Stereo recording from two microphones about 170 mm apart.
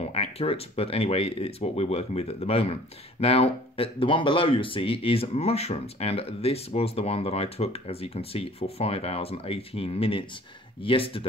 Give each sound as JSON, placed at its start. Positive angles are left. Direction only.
{"t": 0.0, "sound": "speech", "side_deg": 35}